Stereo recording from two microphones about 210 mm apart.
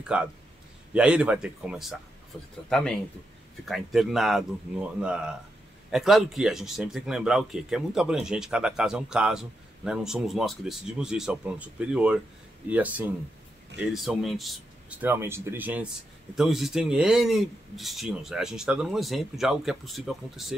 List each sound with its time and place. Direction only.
0.0 s a man's voice: 5° right (ahead or behind)